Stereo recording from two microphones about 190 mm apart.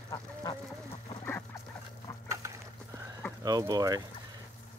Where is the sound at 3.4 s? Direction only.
20° right (ahead or behind).